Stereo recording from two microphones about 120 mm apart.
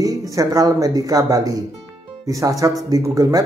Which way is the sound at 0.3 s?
30° right (ahead or behind).